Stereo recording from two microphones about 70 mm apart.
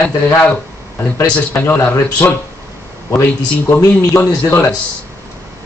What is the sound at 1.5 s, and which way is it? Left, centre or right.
Speech, left.